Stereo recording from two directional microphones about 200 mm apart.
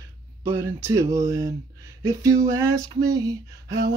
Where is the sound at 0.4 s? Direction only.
15° right (ahead or behind).